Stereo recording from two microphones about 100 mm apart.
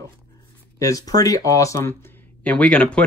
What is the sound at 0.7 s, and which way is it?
Speech, 35° left (ahead or behind).